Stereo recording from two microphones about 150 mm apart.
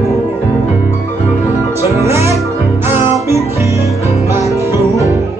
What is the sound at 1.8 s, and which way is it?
Music, 20° right (ahead or behind).